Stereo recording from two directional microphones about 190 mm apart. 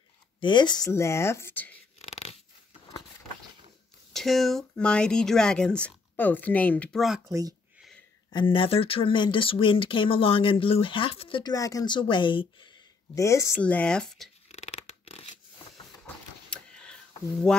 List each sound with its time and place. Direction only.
0.4 s speech: 25° left (ahead or behind)
2.0 s dog: 35° left (ahead or behind)
4.1 s speech: centre (ahead or behind)
7.2 s speech: 20° right (ahead or behind)
8.3 s speech: 25° left (ahead or behind); by 14.3 s centre (ahead or behind)
14.5 s a sound: 35° left (ahead or behind)
16.4 s a sound: 5° left (ahead or behind)